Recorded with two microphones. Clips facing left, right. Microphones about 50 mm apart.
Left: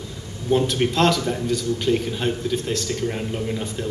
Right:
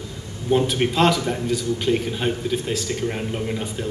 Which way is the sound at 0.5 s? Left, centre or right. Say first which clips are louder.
Even; centre.